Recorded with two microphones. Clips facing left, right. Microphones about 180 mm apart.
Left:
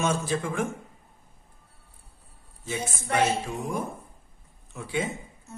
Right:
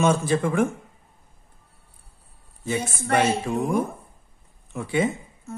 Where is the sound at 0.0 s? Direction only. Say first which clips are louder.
Right 6 dB; 60° right (ahead or behind).